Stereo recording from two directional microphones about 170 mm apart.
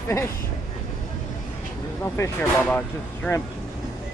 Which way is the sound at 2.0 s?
10° left (ahead or behind).